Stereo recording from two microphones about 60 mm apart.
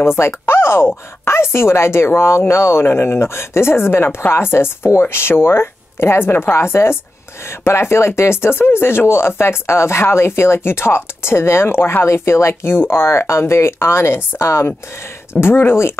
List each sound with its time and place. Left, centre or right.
0.0 s speech: left